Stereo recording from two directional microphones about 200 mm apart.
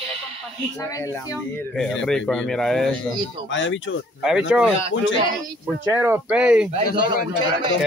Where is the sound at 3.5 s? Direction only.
70° left (ahead or behind).